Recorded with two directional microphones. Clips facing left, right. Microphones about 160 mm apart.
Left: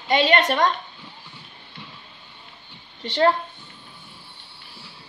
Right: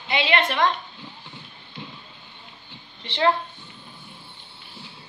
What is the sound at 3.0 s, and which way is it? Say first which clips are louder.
Speech: left 4 dB; 40° left (ahead or behind).